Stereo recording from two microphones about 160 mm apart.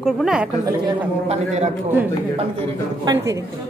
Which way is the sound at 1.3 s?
45° right (ahead or behind).